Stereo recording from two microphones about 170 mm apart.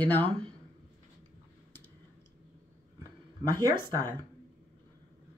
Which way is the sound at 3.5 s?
15° left (ahead or behind).